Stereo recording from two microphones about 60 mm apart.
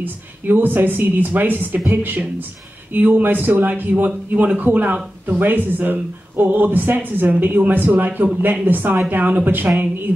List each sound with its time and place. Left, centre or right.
0.0 s speech: right